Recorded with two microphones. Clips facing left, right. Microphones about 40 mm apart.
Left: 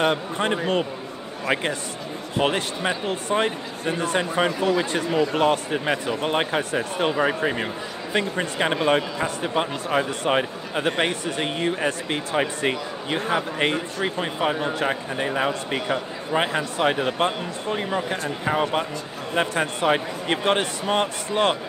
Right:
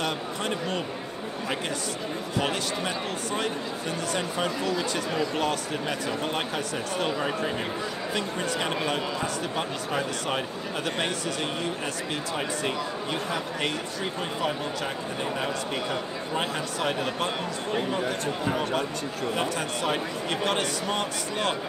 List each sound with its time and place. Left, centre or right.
0.0 s speech: left
2.3 s speech: left